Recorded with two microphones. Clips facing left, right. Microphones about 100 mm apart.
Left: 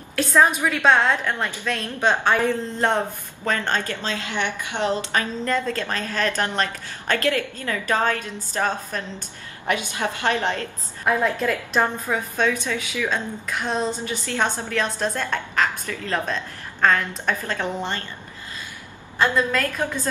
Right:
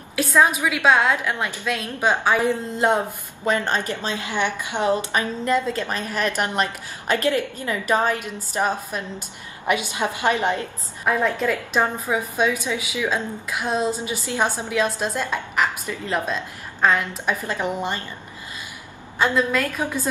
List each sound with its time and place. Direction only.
0.1 s a woman's voice: 5° right (ahead or behind)
11.1 s a woman's voice: centre (ahead or behind)
11.8 s a woman's voice: 15° right (ahead or behind)
19.1 s a woman's voice: 5° right (ahead or behind)